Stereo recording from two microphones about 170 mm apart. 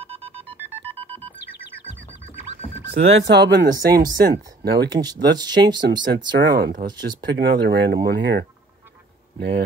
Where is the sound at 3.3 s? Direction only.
90° right.